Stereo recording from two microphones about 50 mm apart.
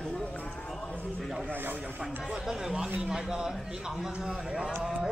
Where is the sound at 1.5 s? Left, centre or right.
Right.